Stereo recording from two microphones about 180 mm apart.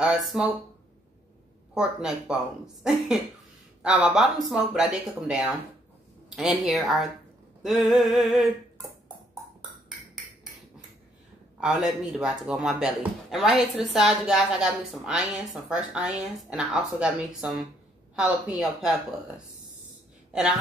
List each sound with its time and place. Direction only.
0.0 s a woman's voice: centre (ahead or behind)
1.7 s a woman's voice: 5° right (ahead or behind)
11.6 s a woman's voice: 5° right (ahead or behind)